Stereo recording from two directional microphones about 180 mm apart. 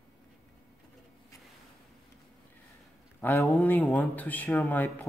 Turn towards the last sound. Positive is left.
turn(degrees=10)  # may be behind; listen again after turning